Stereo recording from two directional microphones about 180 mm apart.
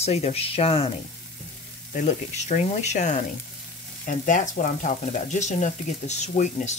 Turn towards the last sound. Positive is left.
turn(degrees=40)  # may be behind; listen again after turning